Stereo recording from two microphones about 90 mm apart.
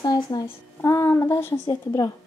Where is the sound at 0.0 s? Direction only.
50° left (ahead or behind); by 1.6 s 30° left (ahead or behind).